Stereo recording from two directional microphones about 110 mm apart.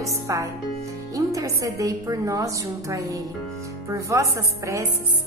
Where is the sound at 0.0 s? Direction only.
30° right (ahead or behind).